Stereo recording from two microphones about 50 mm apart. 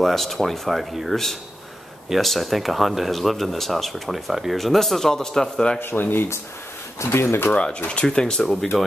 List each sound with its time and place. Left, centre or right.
0.0 s speech: centre
5.8 s speech: left
7.0 s speech: left
7.9 s speech: left
8.3 s speech: centre